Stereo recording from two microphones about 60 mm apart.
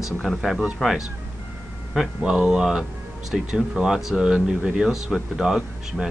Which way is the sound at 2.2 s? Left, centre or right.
Centre.